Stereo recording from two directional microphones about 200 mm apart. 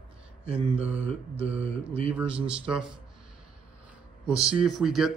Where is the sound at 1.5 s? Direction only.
30° right (ahead or behind).